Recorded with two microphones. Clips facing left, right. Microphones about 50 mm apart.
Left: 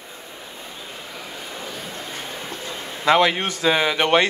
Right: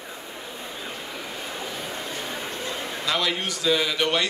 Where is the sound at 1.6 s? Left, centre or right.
Centre.